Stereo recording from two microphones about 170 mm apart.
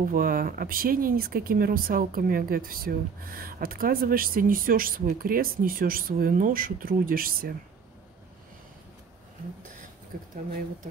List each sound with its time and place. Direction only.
0.0 s speech: 55° right (ahead or behind)
10.1 s speech: 55° right (ahead or behind)